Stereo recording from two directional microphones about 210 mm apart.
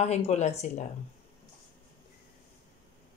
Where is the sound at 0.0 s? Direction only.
30° left (ahead or behind).